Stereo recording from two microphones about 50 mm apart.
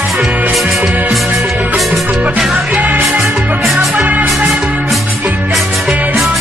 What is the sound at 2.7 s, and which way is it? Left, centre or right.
Music, right.